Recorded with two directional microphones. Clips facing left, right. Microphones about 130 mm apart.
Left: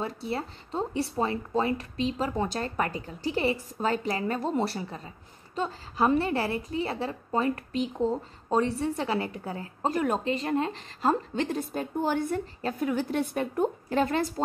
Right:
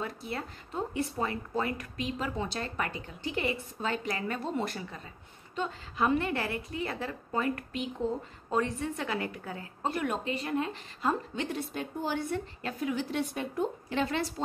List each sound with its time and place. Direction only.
0.0 s speech: 30° left (ahead or behind)
2.3 s a woman's voice: 45° left (ahead or behind)